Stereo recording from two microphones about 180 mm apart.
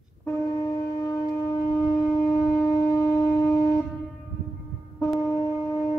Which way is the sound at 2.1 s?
15° left (ahead or behind).